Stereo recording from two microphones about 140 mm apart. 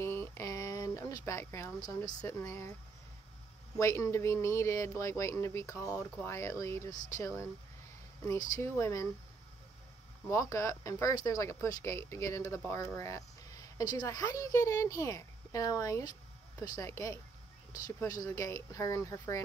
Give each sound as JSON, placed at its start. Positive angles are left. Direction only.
{"t": 0.0, "sound": "a sound", "side_deg": 15}
{"t": 3.8, "sound": "speech", "side_deg": 20}
{"t": 10.3, "sound": "speech", "side_deg": 20}